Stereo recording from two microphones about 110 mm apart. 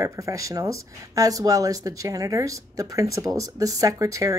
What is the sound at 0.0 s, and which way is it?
Speech, 30° right (ahead or behind).